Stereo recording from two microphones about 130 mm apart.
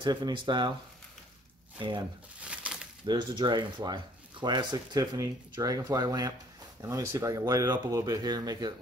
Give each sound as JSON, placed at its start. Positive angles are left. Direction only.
{"t": 0.0, "sound": "speech", "side_deg": -35}
{"t": 1.8, "sound": "speech", "side_deg": -40}
{"t": 2.4, "sound": "a sound", "side_deg": -10}
{"t": 3.1, "sound": "speech", "side_deg": -35}